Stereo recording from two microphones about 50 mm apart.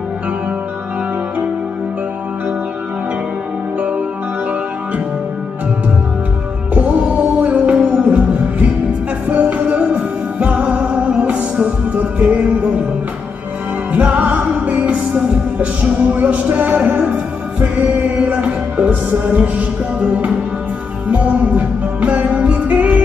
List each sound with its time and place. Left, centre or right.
6.7 s music: right
13.9 s music: right